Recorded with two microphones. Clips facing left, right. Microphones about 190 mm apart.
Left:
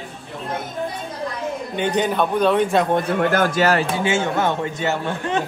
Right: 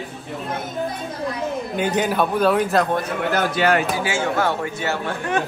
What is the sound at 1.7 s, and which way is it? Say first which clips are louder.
A man's voice: left 1 dB; 5° right (ahead or behind).